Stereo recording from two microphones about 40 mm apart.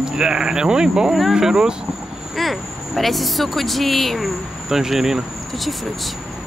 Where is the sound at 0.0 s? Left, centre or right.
Centre.